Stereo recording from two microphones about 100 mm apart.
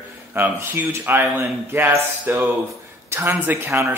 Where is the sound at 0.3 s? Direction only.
20° right (ahead or behind).